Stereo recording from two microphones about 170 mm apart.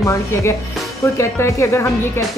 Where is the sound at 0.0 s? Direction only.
15° left (ahead or behind).